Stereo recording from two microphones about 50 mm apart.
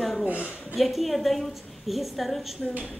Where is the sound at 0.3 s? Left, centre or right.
Right.